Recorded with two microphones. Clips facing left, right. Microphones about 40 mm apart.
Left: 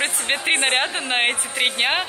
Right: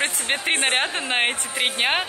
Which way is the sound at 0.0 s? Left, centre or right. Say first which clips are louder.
Left 1 dB; centre.